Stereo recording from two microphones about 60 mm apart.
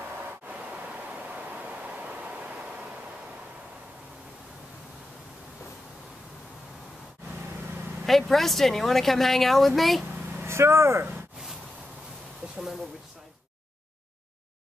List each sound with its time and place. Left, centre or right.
0.5 s pink noise: right
8.1 s speech: centre
10.4 s speech: right